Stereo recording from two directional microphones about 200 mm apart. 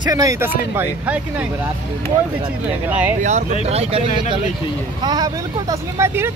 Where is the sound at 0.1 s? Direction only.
15° right (ahead or behind).